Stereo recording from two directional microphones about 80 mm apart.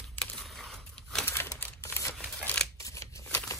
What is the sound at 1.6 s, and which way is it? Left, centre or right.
Crumpling, left.